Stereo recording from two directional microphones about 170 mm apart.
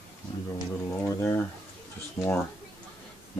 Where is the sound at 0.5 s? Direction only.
15° left (ahead or behind).